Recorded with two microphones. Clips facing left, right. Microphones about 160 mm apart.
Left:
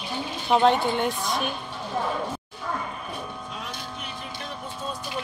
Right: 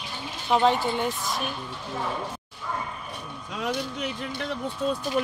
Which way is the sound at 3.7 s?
80° right.